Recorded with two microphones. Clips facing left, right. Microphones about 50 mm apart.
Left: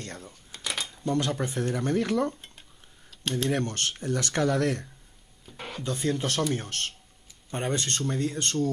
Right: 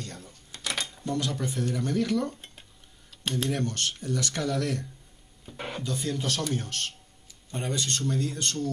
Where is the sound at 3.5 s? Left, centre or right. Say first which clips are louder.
Left 1 dB; left.